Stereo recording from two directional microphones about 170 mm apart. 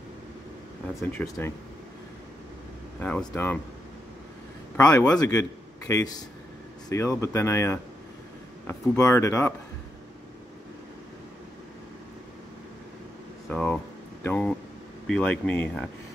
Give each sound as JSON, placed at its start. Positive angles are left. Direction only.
{"t": 1.1, "sound": "speech", "side_deg": 15}
{"t": 3.0, "sound": "speech", "side_deg": 10}
{"t": 4.7, "sound": "a man's voice", "side_deg": 20}
{"t": 13.5, "sound": "a sound", "side_deg": 5}
{"t": 14.2, "sound": "speech", "side_deg": 10}